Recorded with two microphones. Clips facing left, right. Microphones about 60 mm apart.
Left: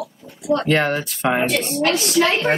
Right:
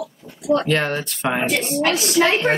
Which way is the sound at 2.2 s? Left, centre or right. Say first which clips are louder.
Right 1 dB; centre.